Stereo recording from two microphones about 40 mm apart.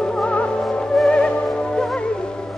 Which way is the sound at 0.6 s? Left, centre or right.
Centre.